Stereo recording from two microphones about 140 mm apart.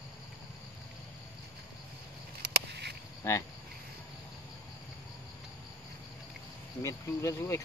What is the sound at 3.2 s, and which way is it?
Speech, 20° left (ahead or behind).